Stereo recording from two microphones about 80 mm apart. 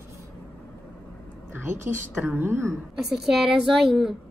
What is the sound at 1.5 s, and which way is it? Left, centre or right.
A woman's voice, right.